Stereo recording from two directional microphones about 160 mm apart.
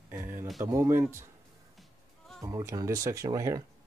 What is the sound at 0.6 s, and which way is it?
Speech, 20° right (ahead or behind).